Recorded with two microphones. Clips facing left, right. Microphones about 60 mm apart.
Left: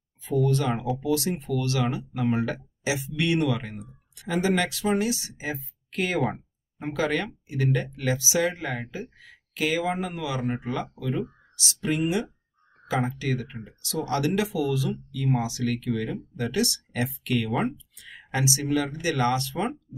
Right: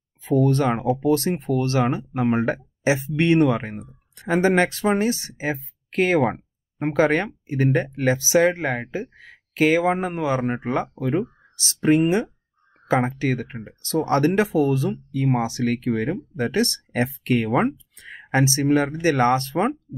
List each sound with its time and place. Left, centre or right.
0.5 s speech: right
6.3 s a sound: right
7.4 s speech: right